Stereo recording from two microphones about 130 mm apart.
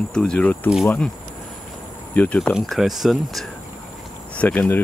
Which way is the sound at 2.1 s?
10° left (ahead or behind).